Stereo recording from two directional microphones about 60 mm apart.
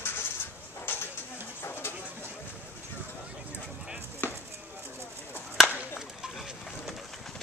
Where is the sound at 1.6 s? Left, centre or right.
Left.